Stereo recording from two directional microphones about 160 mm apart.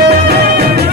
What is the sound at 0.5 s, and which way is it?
Music, 80° right.